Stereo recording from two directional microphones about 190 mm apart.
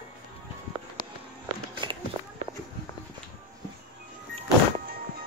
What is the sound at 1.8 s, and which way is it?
Walk, 25° right (ahead or behind).